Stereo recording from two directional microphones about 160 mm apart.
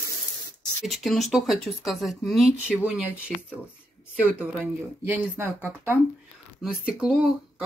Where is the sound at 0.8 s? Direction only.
Centre (ahead or behind).